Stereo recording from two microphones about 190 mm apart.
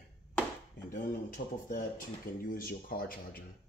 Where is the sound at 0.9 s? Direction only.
45° left (ahead or behind).